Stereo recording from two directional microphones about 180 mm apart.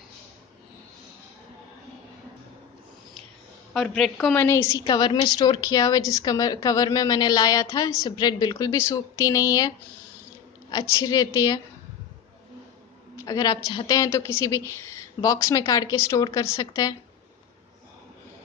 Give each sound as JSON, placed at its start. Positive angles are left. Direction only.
{"t": 3.7, "sound": "a woman's voice", "side_deg": 0}
{"t": 4.5, "sound": "a woman's voice", "side_deg": 15}
{"t": 10.7, "sound": "a woman's voice", "side_deg": 20}
{"t": 13.1, "sound": "a sound", "side_deg": 20}
{"t": 13.7, "sound": "a woman's voice", "side_deg": 20}